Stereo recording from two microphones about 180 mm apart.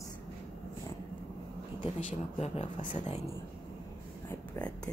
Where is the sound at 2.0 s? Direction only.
40° left (ahead or behind).